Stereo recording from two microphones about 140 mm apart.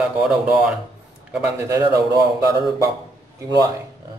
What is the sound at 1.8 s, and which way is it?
Speech, 25° right (ahead or behind).